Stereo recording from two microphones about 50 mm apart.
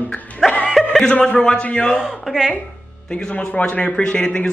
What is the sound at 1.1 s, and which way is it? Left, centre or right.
Speech, left.